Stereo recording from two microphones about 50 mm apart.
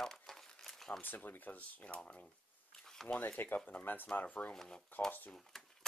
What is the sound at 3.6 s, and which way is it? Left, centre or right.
Speech, left.